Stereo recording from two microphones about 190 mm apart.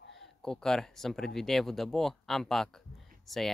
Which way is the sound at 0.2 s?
5° left (ahead or behind).